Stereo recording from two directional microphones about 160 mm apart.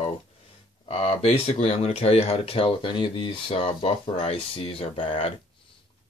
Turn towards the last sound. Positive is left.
turn(degrees=35)  # may be behind; listen again after turning